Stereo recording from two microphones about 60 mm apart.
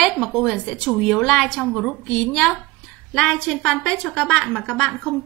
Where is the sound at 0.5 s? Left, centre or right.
Centre.